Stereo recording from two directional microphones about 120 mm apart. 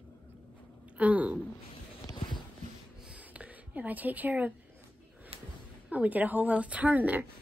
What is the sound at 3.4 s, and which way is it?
A woman's voice, 15° right (ahead or behind).